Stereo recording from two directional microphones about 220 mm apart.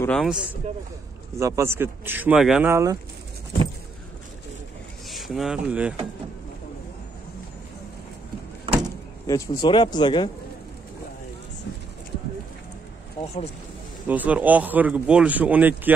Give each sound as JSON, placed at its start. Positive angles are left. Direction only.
{"t": 0.0, "sound": "speech", "side_deg": 5}
{"t": 5.1, "sound": "speech", "side_deg": 0}
{"t": 9.3, "sound": "speech", "side_deg": 15}
{"t": 13.2, "sound": "speech", "side_deg": 30}
{"t": 14.0, "sound": "speech", "side_deg": -5}